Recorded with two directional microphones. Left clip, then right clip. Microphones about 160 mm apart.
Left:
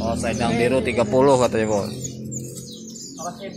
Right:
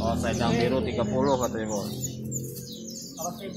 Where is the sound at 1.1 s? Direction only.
35° left (ahead or behind).